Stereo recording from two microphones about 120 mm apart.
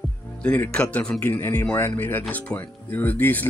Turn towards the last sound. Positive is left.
turn(degrees=15)  # may be behind; listen again after turning